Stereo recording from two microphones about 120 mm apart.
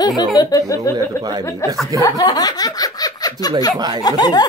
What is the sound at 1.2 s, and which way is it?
Speech, 35° right (ahead or behind).